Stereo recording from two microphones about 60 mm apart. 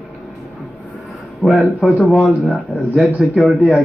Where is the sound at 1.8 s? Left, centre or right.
Centre.